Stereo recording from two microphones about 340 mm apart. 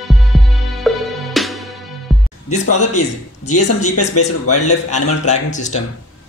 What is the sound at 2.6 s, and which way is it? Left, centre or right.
Speech, left.